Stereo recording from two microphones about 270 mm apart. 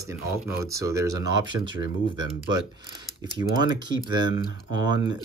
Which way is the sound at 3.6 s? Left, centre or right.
Centre.